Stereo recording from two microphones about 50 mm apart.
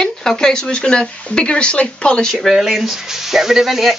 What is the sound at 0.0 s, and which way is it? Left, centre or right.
Speech, centre.